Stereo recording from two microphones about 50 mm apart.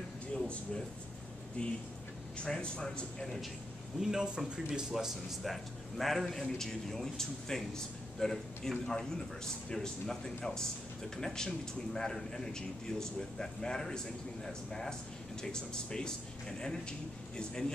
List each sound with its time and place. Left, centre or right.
0.3 s a sound: centre
1.6 s a man's voice: left
4.0 s speech: centre
4.9 s a man's voice: centre